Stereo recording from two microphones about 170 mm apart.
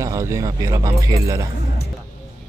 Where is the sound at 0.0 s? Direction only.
20° right (ahead or behind).